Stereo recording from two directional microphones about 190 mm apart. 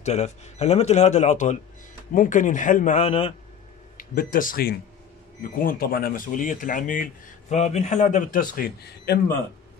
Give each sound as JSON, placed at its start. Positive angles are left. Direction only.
{"t": 0.0, "sound": "speech", "side_deg": 35}
{"t": 4.0, "sound": "speech", "side_deg": 45}